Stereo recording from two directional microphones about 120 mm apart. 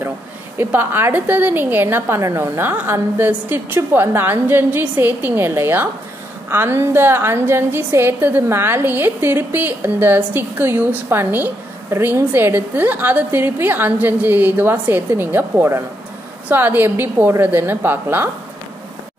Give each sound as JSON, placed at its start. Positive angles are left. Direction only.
{"t": 0.7, "sound": "a woman's voice", "side_deg": -15}